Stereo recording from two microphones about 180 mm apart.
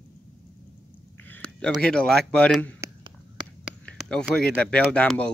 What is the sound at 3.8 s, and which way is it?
Speech, 5° left (ahead or behind).